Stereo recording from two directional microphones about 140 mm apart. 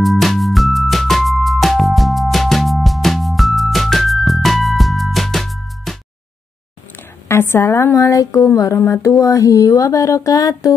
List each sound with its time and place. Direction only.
0.0 s music: centre (ahead or behind)
7.2 s speech: 20° left (ahead or behind)